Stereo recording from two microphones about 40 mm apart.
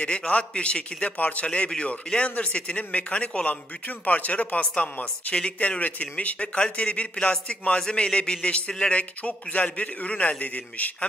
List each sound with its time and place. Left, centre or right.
0.3 s a man's voice: left
6.1 s a man's voice: left
8.9 s a man's voice: left